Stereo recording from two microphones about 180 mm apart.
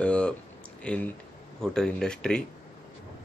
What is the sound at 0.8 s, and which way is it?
Speech, 10° left (ahead or behind).